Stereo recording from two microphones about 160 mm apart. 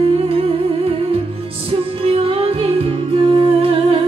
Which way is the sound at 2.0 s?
35° right (ahead or behind).